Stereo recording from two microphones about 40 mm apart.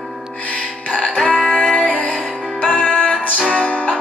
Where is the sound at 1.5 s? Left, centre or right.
Left.